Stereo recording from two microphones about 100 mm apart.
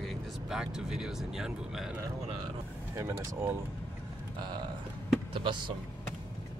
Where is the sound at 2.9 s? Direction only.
30° right (ahead or behind).